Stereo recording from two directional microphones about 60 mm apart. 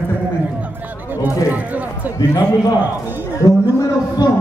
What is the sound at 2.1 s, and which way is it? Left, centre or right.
Speech, left.